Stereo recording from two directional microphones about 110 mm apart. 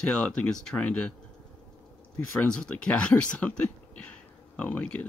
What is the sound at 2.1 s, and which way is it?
Speech, 10° left (ahead or behind).